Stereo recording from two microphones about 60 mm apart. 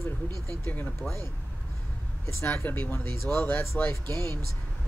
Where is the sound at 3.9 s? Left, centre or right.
Left.